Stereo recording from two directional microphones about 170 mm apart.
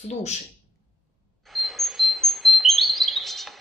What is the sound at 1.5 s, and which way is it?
Chirp, centre (ahead or behind).